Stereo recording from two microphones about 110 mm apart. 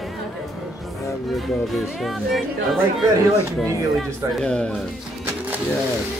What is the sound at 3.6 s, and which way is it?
Speech, 5° left (ahead or behind).